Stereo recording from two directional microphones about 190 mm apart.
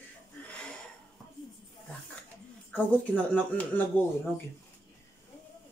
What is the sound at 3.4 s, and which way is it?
Speech, 10° left (ahead or behind).